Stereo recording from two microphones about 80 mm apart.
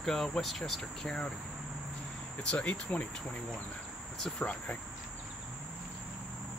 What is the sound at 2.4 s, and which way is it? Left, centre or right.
Speech, centre.